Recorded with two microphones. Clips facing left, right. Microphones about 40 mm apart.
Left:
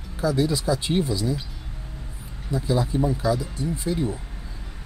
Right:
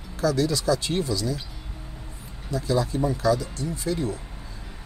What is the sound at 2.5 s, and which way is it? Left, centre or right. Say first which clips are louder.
Speech: left 1 dB; centre.